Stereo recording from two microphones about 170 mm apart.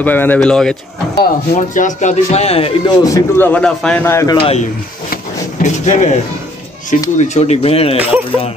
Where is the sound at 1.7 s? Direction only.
50° left (ahead or behind).